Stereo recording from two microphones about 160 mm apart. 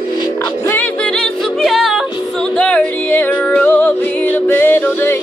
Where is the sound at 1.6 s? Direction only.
Centre (ahead or behind).